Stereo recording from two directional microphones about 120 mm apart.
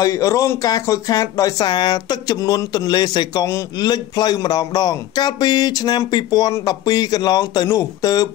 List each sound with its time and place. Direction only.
0.0 s speech: 30° left (ahead or behind)